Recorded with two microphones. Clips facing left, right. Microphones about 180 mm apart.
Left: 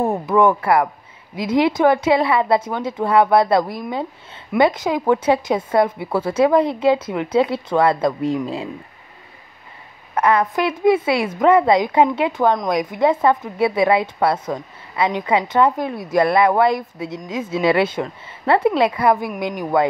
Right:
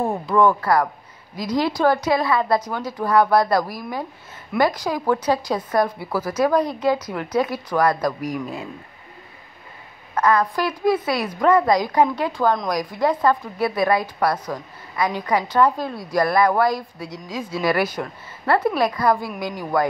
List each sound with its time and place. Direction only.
0.0 s speech: 20° left (ahead or behind)
10.1 s speech: 25° left (ahead or behind)